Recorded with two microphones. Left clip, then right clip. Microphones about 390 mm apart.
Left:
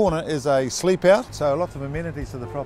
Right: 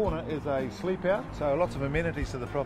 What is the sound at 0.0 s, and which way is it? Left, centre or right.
Speech, left.